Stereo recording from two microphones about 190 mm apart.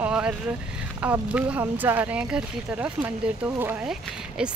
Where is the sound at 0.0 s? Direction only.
5° right (ahead or behind).